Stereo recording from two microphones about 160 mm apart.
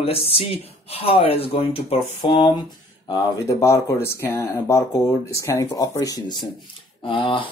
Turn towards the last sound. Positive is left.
turn(degrees=30)  # may be behind; listen again after turning